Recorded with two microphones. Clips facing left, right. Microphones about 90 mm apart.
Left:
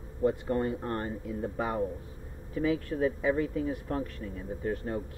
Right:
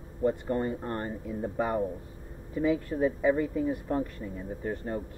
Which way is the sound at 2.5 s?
15° right (ahead or behind).